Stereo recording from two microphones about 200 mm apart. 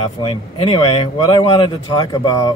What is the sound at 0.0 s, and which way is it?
Speech, 30° left (ahead or behind).